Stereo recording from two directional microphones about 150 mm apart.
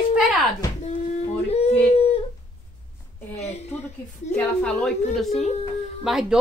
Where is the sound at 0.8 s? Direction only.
45° left (ahead or behind).